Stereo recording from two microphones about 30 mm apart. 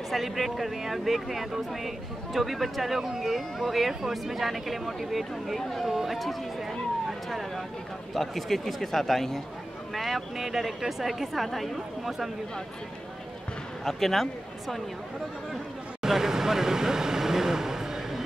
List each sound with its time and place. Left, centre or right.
0.1 s speech: centre
5.9 s speech: centre
8.1 s a man's voice: centre
13.8 s a man's voice: centre
16.0 s vehicle: centre